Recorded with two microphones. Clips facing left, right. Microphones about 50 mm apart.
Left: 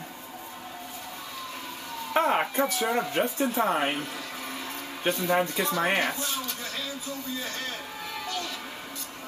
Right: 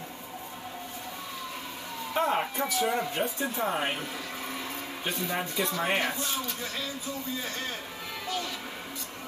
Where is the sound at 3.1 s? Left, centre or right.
Left.